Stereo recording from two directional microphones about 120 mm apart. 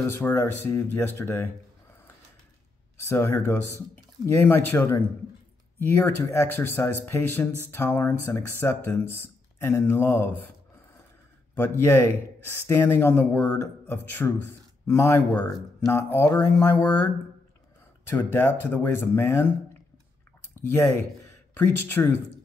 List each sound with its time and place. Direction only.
0.2 s speech: 15° left (ahead or behind)
3.1 s speech: 20° left (ahead or behind)
11.5 s speech: 20° left (ahead or behind)
20.6 s speech: 20° left (ahead or behind)